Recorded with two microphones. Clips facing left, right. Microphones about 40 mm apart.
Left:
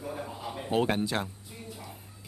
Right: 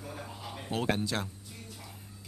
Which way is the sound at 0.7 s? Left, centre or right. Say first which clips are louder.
Left 4 dB; centre.